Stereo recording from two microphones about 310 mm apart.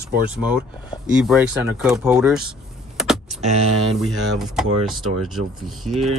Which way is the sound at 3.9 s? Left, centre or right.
Centre.